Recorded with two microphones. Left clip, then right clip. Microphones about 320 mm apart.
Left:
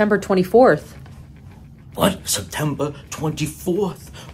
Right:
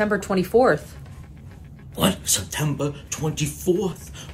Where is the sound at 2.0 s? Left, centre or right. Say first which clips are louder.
Left 3 dB; centre.